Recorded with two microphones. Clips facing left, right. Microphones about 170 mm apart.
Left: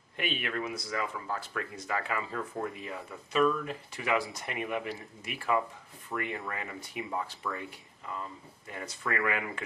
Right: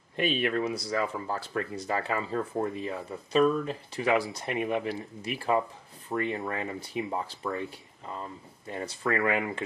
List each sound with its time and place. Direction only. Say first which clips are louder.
0.1 s speech: right 7 dB; 30° right (ahead or behind)